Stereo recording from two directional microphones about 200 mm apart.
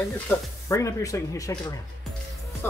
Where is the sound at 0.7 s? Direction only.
15° left (ahead or behind).